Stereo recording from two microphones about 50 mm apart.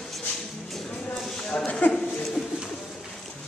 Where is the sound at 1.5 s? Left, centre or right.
Left.